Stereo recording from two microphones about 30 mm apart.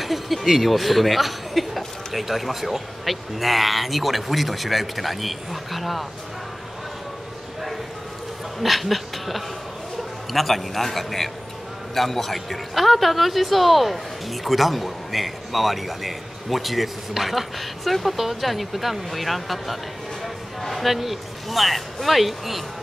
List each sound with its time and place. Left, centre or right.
0.0 s a man's voice: centre
8.5 s a man's voice: centre